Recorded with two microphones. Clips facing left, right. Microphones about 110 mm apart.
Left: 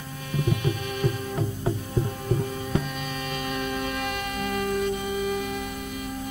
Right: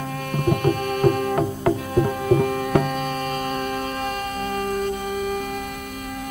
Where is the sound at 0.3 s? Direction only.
55° right (ahead or behind).